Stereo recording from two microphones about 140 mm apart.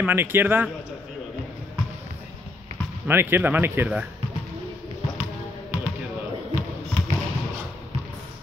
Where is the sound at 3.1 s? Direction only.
15° right (ahead or behind).